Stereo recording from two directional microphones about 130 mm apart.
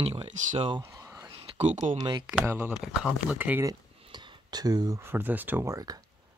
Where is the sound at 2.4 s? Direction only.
20° right (ahead or behind).